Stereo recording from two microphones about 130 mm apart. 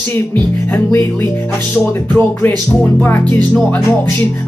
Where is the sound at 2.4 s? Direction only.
15° left (ahead or behind).